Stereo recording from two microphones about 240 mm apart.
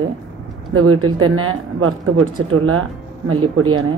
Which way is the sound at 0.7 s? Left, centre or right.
Right.